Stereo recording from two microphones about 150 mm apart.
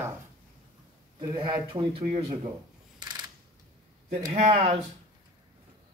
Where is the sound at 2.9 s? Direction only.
30° right (ahead or behind).